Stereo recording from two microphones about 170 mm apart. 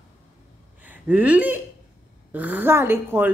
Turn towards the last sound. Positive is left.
turn(degrees=-15)  # may be behind; listen again after turning